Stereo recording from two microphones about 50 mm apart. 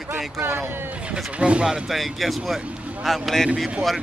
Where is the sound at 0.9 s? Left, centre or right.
Right.